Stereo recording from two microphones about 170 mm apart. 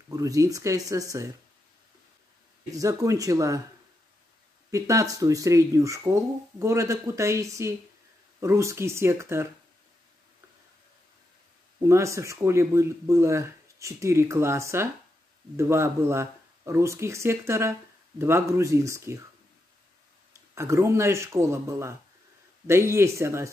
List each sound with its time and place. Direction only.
0.1 s speech: 20° right (ahead or behind)
2.7 s speech: 20° right (ahead or behind)
4.6 s speech: 20° right (ahead or behind)
11.8 s speech: 15° right (ahead or behind)
20.5 s speech: 15° right (ahead or behind)